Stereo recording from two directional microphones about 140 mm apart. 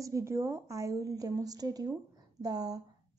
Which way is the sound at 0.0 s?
20° right (ahead or behind).